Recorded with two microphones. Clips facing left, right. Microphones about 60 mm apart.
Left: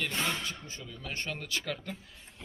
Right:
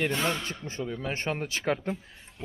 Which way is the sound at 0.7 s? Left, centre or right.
Right.